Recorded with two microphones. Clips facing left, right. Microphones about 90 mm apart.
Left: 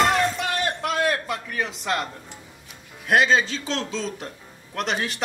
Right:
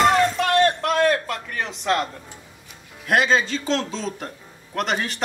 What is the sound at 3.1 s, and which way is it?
Speech, centre (ahead or behind).